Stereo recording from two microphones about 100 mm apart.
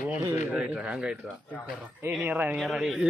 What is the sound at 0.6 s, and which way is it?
Speech, 10° right (ahead or behind).